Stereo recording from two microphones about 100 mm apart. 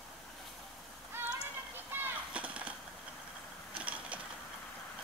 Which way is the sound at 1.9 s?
15° right (ahead or behind).